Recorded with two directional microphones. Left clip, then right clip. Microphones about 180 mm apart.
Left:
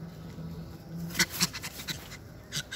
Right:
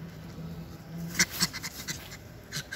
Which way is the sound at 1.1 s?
20° left (ahead or behind).